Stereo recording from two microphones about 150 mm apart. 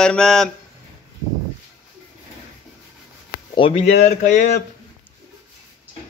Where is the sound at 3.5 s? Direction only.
40° left (ahead or behind).